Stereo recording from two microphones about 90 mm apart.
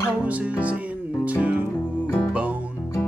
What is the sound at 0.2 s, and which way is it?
Music, 15° right (ahead or behind).